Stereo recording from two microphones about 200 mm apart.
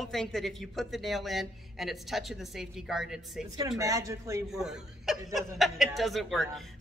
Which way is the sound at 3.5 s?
15° right (ahead or behind).